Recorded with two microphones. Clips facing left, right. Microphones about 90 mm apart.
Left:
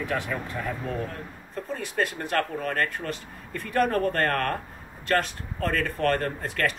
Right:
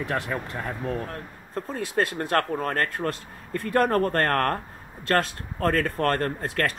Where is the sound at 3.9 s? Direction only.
50° right (ahead or behind).